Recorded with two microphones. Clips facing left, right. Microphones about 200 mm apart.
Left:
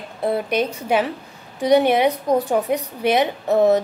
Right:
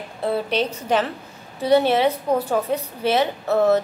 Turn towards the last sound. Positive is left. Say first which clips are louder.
# left 2 dB
turn(degrees=15)  # may be behind; listen again after turning